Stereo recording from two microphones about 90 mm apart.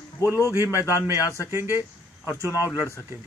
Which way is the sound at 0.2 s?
35° left (ahead or behind).